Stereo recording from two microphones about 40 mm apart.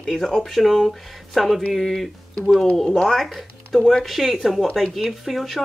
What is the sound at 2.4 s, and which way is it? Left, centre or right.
Speech, centre.